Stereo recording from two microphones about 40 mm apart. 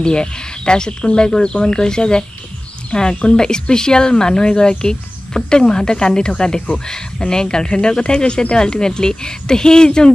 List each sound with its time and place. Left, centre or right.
0.0 s speech: left